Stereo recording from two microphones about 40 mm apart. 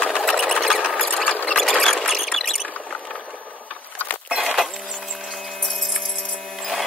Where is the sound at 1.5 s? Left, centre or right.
Centre.